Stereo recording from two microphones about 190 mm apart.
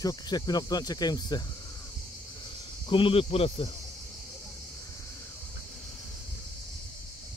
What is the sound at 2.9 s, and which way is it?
Cricket, 30° left (ahead or behind).